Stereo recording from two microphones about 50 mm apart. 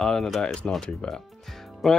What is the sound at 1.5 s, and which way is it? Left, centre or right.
Music, centre.